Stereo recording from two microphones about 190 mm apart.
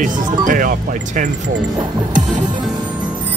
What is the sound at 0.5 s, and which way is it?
Speech, 45° right (ahead or behind).